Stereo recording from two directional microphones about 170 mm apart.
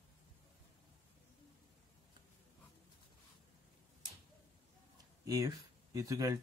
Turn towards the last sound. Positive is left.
turn(degrees=-20)  # may be behind; listen again after turning